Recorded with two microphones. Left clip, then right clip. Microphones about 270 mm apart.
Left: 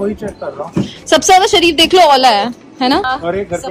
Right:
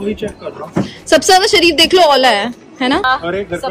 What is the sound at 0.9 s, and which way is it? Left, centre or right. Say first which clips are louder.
A woman's voice: left 1 dB; centre.